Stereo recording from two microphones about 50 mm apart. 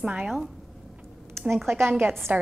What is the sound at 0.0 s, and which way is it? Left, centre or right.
Speech, right.